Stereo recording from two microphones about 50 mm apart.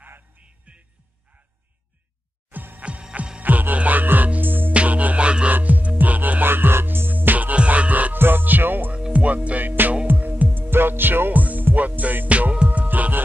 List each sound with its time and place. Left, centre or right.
0.7 s music: right
2.5 s music: right
2.8 s music: right
3.4 s music: right
4.7 s music: right
8.2 s music: right
9.1 s music: right